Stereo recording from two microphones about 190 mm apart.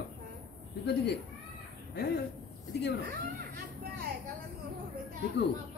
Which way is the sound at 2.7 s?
60° left (ahead or behind).